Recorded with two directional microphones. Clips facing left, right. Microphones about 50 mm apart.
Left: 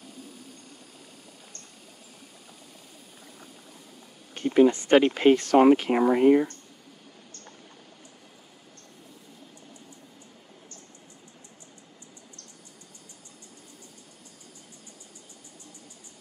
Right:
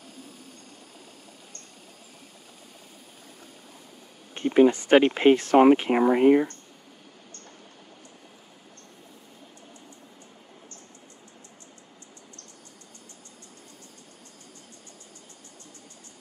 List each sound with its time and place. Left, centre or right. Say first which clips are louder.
4.3 s speech: right 1 dB; centre